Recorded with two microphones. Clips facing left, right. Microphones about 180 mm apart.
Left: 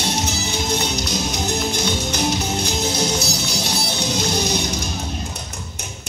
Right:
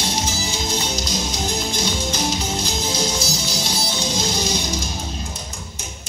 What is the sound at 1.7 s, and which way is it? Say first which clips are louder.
Music: left 1 dB; 60° left (ahead or behind).